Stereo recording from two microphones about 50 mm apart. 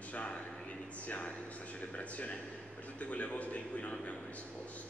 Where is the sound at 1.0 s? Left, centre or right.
Left.